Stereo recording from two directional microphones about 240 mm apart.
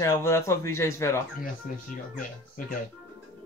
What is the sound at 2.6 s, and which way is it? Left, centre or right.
Speech, left.